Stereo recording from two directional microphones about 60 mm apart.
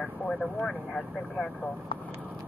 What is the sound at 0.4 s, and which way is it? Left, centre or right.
Speech, centre.